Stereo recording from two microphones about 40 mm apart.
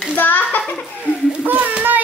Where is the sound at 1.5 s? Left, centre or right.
Right.